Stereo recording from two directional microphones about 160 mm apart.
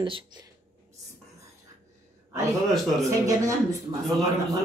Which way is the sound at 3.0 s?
20° right (ahead or behind).